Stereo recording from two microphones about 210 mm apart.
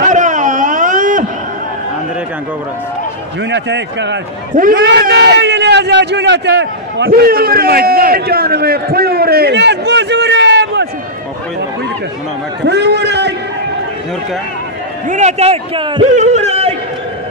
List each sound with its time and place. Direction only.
0.0 s a sound: 35° right (ahead or behind)
3.4 s a man's voice: 55° right (ahead or behind)
12.6 s a man's voice: 55° right (ahead or behind)
15.0 s a man's voice: 35° right (ahead or behind)